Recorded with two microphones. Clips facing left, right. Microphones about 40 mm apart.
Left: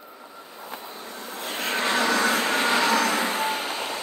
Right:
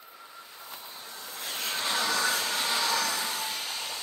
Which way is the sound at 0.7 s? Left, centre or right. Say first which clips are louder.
Left 8 dB; left.